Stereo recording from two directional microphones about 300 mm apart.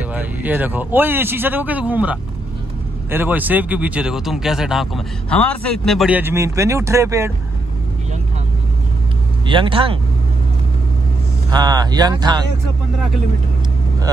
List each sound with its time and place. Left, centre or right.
0.0 s speech: centre
9.5 s speech: centre
11.5 s speech: centre